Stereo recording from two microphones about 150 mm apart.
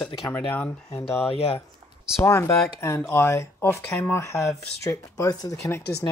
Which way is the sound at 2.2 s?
20° left (ahead or behind).